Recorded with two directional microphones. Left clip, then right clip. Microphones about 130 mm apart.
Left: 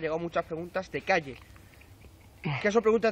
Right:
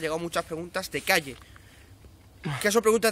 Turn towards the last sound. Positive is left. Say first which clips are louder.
# right 2 dB
turn(degrees=-35)  # may be behind; listen again after turning